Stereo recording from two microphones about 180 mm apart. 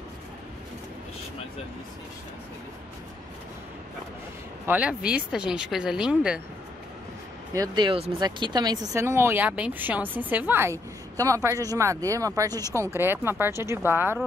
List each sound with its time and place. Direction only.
4.6 s speech: 5° right (ahead or behind)
7.5 s speech: 20° right (ahead or behind)